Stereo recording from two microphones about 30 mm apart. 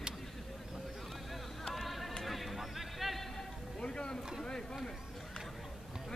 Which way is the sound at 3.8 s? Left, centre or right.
Left.